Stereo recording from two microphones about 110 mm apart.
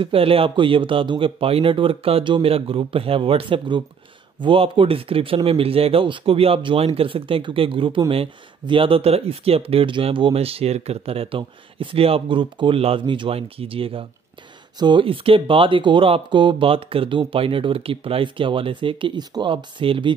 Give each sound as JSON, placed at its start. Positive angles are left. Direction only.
{"t": 0.0, "sound": "speech", "side_deg": -60}
{"t": 13.0, "sound": "speech", "side_deg": -50}